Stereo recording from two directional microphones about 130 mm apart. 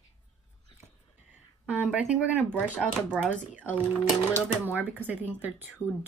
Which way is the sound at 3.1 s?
10° right (ahead or behind).